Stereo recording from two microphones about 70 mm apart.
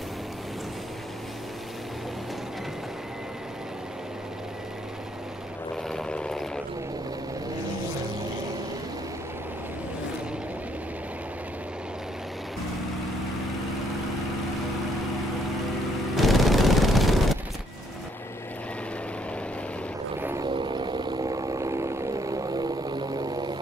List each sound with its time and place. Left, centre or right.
5.9 s a sound: centre
16.2 s fusillade: centre
20.6 s vehicle: right
22.5 s vehicle: right